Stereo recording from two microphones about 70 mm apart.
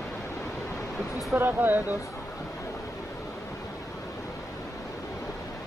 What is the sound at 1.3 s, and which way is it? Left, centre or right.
Speech, right.